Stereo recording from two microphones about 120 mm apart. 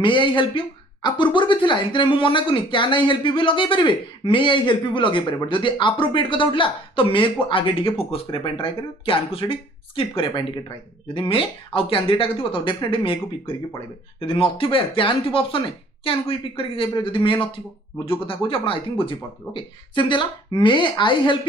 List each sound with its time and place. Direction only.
0.0 s speech: 40° left (ahead or behind)